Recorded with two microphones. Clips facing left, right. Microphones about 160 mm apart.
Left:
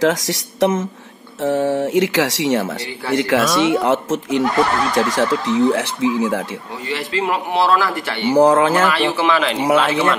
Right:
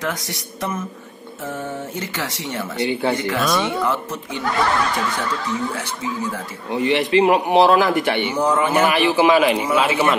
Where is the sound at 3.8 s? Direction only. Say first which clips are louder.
Left 5 dB; 90° left.